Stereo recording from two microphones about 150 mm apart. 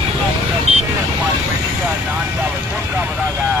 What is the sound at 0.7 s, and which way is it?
Vehicle, 45° right (ahead or behind).